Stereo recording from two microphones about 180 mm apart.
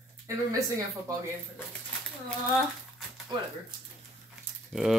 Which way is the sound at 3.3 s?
25° right (ahead or behind).